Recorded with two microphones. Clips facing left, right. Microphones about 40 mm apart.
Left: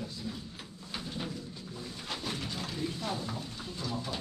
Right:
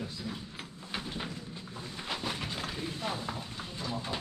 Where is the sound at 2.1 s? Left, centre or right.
Right.